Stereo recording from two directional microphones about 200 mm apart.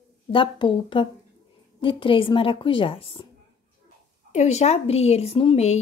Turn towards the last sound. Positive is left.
turn(degrees=30)  # may be behind; listen again after turning